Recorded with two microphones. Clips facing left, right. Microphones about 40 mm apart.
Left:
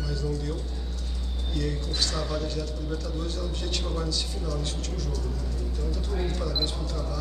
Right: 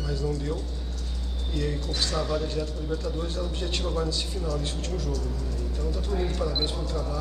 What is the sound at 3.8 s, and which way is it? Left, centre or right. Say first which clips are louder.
Speech: right 5 dB; centre.